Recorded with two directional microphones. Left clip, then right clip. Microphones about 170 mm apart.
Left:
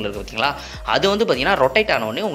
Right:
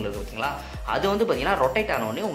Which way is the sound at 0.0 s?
30° left (ahead or behind).